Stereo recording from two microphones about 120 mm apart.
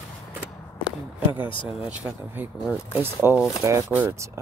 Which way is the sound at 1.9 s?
10° right (ahead or behind).